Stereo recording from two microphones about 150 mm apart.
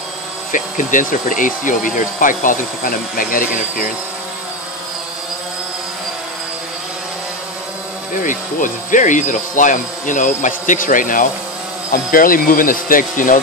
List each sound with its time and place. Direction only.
0.5 s speech: 60° left (ahead or behind)
8.2 s speech: 60° left (ahead or behind)